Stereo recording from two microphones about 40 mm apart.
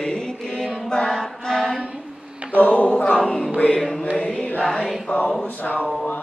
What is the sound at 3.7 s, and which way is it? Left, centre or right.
Music, centre.